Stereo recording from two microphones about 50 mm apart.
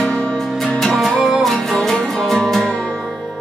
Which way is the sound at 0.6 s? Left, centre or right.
Centre.